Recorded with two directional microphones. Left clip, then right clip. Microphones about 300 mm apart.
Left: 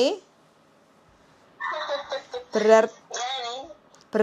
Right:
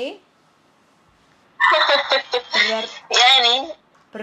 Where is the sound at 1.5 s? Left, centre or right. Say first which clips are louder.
Right 14 dB; right.